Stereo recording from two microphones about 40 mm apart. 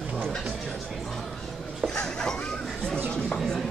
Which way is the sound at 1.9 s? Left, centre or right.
Centre.